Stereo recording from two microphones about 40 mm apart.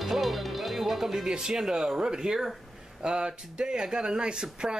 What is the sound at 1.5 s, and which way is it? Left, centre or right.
Speech, right.